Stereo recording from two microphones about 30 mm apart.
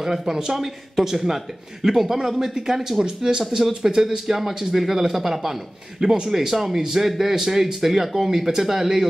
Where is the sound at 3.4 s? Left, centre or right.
Centre.